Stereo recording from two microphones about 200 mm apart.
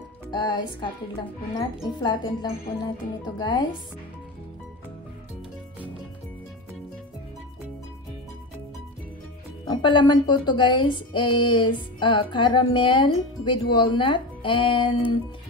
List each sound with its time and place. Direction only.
0.3 s speech: 20° left (ahead or behind)
9.7 s speech: 25° left (ahead or behind)